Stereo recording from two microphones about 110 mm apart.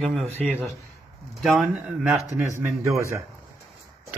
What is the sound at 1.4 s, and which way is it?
Speech, centre (ahead or behind).